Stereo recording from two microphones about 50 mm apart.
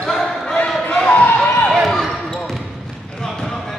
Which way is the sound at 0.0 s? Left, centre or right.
Centre.